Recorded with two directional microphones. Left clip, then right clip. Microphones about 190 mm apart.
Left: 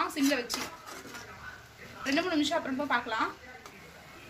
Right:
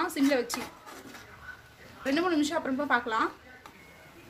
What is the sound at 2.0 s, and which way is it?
A woman's voice, 55° right (ahead or behind).